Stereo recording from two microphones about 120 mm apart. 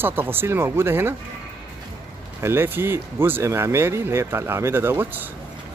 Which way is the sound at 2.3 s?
20° right (ahead or behind).